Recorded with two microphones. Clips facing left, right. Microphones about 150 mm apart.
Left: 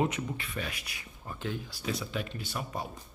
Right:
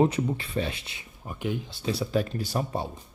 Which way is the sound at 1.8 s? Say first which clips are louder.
Right 8 dB; 35° right (ahead or behind).